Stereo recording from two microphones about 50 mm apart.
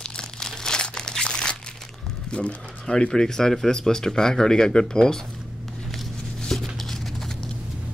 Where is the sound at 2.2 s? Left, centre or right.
Left.